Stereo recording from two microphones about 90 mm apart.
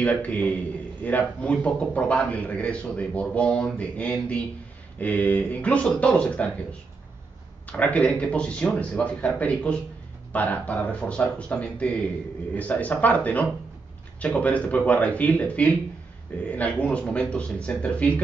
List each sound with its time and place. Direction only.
0.0 s a man's voice: 15° left (ahead or behind)
7.6 s a man's voice: 15° left (ahead or behind)